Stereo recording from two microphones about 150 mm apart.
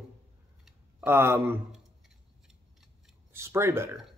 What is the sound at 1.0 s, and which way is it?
Speech, 15° right (ahead or behind).